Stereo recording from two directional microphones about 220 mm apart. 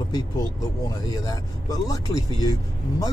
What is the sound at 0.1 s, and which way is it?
Speech, 15° left (ahead or behind).